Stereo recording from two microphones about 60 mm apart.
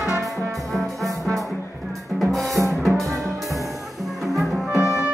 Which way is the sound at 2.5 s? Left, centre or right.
Right.